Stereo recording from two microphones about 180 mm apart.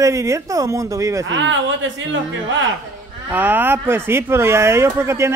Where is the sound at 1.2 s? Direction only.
90° right.